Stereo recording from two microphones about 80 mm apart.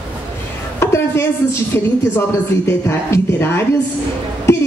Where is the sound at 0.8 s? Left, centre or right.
Left.